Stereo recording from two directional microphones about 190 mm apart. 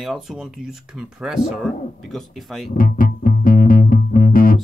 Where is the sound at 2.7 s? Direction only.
45° left (ahead or behind).